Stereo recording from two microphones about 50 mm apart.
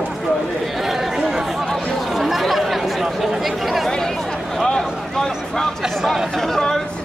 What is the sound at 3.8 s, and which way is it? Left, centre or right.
Speech, centre.